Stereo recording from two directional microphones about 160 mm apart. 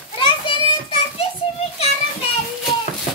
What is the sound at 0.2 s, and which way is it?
Children playing, 35° left (ahead or behind).